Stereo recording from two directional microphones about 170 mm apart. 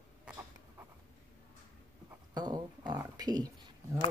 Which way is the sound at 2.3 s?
25° right (ahead or behind).